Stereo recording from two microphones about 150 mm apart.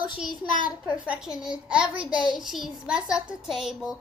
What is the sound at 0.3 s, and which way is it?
Speech, 65° left (ahead or behind).